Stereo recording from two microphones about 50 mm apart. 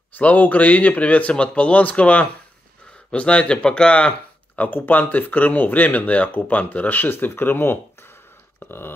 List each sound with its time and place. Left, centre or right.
0.2 s speech: left
4.6 s speech: left
8.5 s a sound: left